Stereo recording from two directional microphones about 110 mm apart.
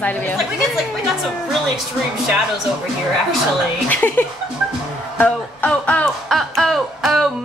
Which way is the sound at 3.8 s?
20° left (ahead or behind).